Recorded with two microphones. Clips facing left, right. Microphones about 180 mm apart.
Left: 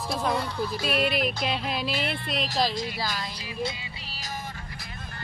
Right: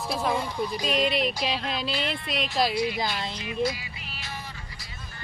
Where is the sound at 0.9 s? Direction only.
5° left (ahead or behind).